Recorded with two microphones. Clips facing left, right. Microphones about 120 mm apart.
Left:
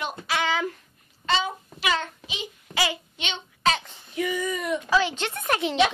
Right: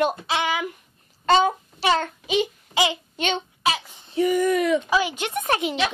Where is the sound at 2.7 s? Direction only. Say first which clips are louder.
Right 3 dB; 85° left.